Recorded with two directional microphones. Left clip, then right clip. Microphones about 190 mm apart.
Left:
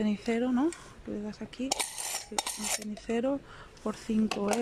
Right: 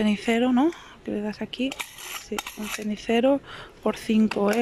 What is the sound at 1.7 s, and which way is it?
Mechanisms, 35° left (ahead or behind).